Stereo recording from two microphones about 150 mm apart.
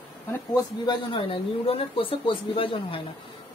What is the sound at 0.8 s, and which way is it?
Speech, 30° left (ahead or behind).